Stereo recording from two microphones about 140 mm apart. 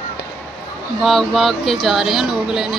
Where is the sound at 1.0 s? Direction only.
Centre (ahead or behind).